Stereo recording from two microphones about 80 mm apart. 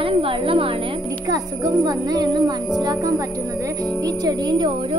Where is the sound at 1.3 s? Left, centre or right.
Right.